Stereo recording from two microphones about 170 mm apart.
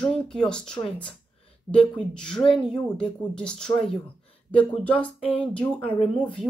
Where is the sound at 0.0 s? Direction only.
5° left (ahead or behind).